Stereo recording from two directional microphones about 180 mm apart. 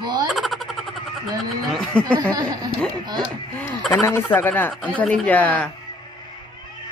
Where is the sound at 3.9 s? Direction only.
15° left (ahead or behind).